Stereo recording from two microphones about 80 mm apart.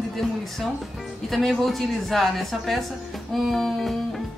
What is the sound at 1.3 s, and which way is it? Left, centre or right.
Speech, centre.